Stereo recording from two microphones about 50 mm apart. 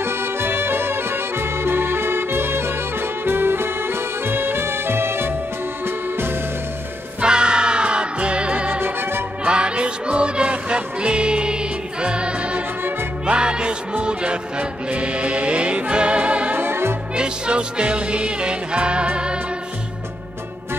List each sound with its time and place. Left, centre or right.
0.0 s music: right
7.2 s music: centre
8.7 s music: right
9.4 s music: right
16.5 s music: right
17.1 s music: centre